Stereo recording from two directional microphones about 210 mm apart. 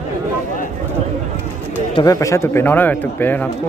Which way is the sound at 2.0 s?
15° left (ahead or behind).